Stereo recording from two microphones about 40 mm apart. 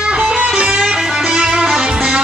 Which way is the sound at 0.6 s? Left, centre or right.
Right.